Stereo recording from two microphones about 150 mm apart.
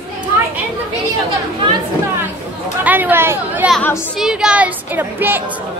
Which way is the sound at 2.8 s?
10° right (ahead or behind).